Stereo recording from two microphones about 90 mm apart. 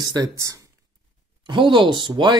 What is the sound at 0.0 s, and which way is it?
Speech, 45° right (ahead or behind).